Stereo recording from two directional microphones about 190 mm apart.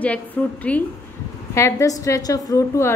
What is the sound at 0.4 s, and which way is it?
A woman's voice, 10° left (ahead or behind).